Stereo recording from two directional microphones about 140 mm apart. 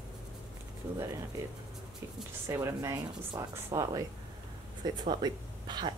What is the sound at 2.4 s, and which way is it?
Speech, 20° right (ahead or behind).